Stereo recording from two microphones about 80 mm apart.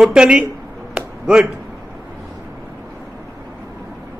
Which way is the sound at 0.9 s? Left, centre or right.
Centre.